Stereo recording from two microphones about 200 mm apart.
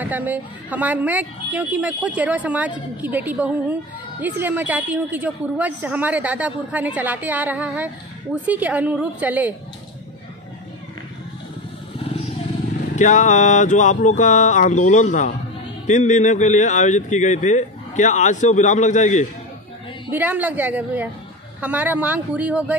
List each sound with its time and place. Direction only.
0.0 s a woman's voice: 10° right (ahead or behind)
12.9 s speech: 40° left (ahead or behind)
20.1 s a woman's voice: 10° right (ahead or behind)